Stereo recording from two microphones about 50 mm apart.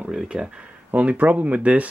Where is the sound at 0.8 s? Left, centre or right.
Right.